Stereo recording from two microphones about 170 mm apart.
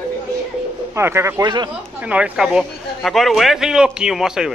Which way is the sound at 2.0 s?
10° right (ahead or behind).